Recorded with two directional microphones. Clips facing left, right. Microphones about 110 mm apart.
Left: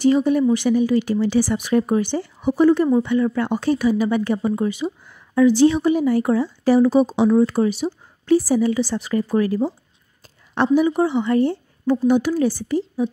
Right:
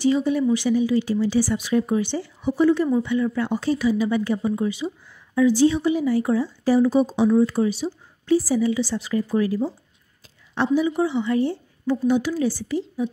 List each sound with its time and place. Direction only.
0.0 s speech: 50° left (ahead or behind)